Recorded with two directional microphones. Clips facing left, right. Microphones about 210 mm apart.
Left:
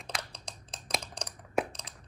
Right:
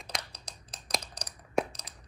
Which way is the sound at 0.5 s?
25° left (ahead or behind).